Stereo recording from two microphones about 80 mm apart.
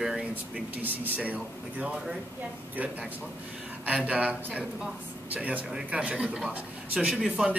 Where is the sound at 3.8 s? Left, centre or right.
Centre.